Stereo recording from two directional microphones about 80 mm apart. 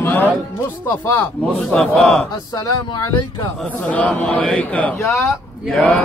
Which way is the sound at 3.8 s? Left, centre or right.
Centre.